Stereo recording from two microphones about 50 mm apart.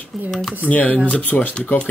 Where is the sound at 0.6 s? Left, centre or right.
Left.